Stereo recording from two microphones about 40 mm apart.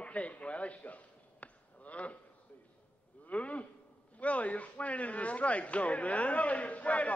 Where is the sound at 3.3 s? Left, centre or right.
Left.